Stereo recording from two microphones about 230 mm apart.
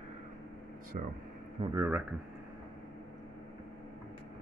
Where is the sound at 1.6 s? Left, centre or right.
Centre.